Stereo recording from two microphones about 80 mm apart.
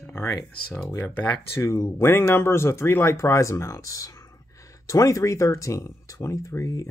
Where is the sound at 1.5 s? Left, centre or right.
Left.